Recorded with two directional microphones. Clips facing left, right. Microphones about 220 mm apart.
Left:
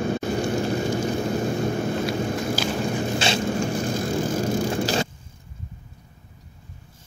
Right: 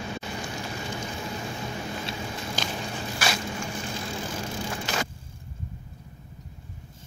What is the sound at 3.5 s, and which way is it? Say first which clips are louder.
Vehicle: left 10 dB; 45° left (ahead or behind).